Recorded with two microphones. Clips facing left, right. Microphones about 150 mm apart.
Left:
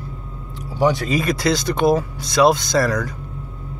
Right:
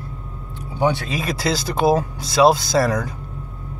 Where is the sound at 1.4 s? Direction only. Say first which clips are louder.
Even; 30° right (ahead or behind).